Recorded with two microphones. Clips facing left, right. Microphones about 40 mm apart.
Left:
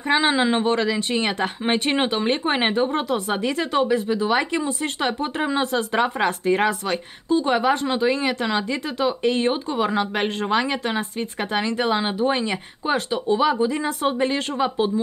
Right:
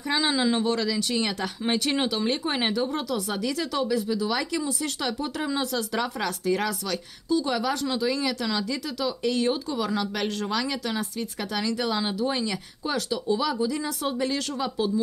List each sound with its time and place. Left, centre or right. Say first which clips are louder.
0.1 s a woman's voice: left 5 dB; left